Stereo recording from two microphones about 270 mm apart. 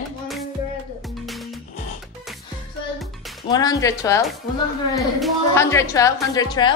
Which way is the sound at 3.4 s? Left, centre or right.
Centre.